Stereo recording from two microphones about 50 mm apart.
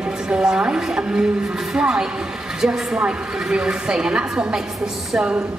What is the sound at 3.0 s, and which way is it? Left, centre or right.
Speech, centre.